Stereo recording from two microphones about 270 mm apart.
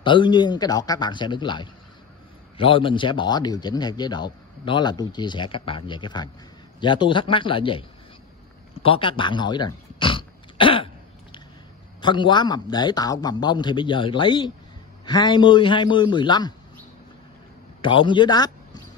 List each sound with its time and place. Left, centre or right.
0.0 s a man's voice: centre
8.8 s a sound: centre
12.0 s a man's voice: centre
17.8 s a man's voice: centre